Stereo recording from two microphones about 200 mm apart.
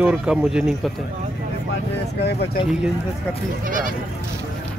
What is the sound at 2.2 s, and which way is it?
Speech, 55° left (ahead or behind).